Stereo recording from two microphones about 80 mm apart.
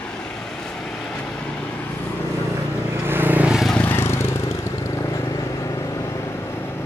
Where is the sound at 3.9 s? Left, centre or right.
Left.